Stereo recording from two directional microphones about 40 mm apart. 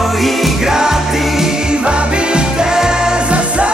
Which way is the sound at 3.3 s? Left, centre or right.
Right.